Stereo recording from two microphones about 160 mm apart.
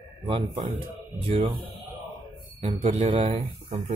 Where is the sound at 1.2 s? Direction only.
35° right (ahead or behind).